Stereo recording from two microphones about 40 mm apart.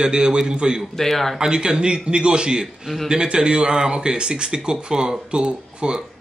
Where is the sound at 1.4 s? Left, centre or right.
Centre.